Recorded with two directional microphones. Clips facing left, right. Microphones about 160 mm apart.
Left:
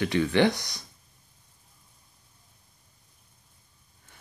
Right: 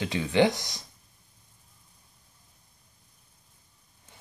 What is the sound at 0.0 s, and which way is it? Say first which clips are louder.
Speech: left 1 dB; 15° right (ahead or behind).